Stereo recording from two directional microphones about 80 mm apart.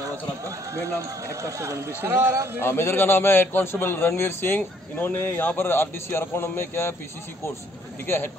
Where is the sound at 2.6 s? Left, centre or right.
Left.